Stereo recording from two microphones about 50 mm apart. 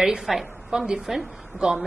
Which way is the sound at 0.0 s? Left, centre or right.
Centre.